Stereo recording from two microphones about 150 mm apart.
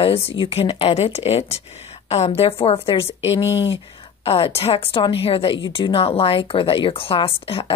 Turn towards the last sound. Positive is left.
turn(degrees=40)  # may be behind; listen again after turning